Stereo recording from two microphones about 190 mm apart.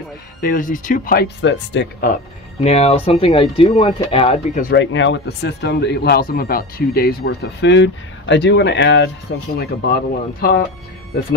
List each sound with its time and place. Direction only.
0.4 s speech: 45° left (ahead or behind); by 2.0 s 70° left (ahead or behind)
2.6 s speech: 35° left (ahead or behind)
4.7 s speech: 80° left
9.6 s speech: 50° left (ahead or behind)